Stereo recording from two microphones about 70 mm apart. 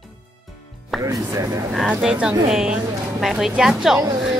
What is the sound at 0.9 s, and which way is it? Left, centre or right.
Music, centre.